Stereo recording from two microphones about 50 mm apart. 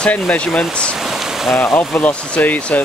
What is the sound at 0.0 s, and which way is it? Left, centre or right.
Speech, left.